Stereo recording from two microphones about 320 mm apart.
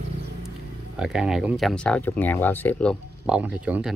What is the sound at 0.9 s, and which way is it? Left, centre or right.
Speech, centre.